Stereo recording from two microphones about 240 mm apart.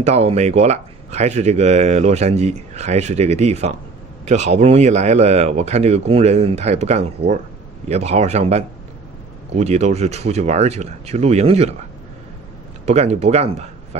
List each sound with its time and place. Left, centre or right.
0.0 s speech: right
12.8 s speech: right